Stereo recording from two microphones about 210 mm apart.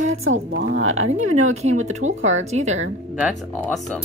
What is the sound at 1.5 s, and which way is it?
A woman's voice, 35° right (ahead or behind).